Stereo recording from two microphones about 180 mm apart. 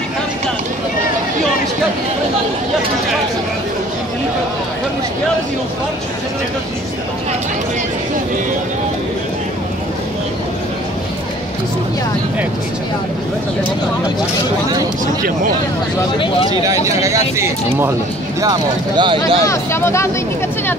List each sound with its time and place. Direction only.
17.0 s speech: 15° right (ahead or behind)
18.4 s speech: 25° right (ahead or behind)
19.4 s speech: 15° left (ahead or behind)